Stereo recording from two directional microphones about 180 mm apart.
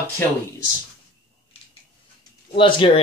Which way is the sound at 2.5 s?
30° left (ahead or behind).